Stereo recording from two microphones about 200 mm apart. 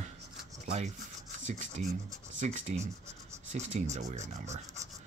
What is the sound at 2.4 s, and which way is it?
Speech, 35° right (ahead or behind).